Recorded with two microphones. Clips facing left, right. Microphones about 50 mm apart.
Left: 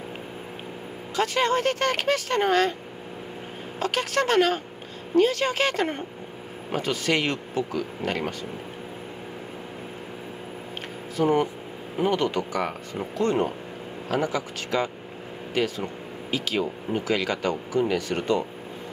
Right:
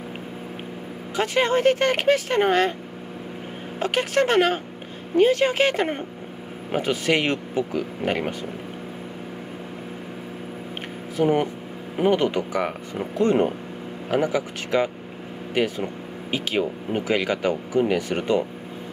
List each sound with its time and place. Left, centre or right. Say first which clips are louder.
1.1 s speech: right 2 dB; centre
3.8 s speech: right 3 dB; centre
11.1 s speech: right 1 dB; centre
16.3 s speech: right 2 dB; right